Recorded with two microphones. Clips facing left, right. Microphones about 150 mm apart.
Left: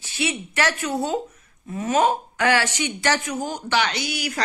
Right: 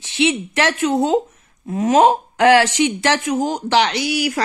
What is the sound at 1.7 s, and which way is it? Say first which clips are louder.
Speech: right 7 dB; 75° right (ahead or behind).